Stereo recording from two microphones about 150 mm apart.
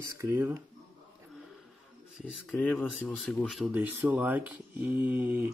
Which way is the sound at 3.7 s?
10° right (ahead or behind).